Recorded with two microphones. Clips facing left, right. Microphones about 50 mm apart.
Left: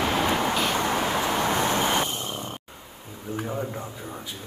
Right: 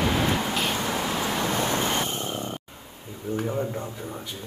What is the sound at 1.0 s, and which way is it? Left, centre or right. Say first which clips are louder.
Vehicle: left 2 dB; left.